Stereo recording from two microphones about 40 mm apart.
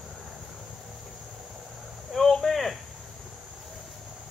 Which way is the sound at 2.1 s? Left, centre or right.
Centre.